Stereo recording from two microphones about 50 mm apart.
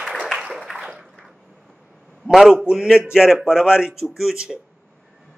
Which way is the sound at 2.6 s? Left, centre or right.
Centre.